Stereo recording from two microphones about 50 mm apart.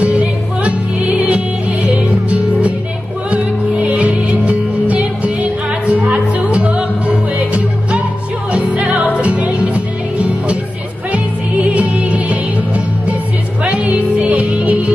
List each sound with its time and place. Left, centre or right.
0.0 s music: right